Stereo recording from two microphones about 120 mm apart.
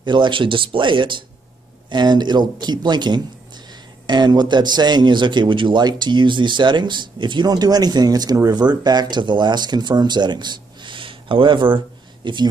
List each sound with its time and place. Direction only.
0.0 s a man's voice: 40° right (ahead or behind)